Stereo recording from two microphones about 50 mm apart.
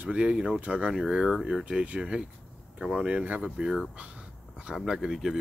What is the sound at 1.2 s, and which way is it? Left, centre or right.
Speech, centre.